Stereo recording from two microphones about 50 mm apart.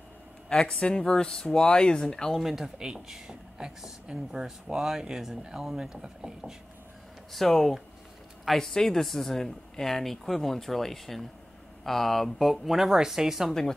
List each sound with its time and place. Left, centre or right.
0.5 s speech: centre
2.4 s speech: centre
7.3 s speech: centre
13.5 s speech: centre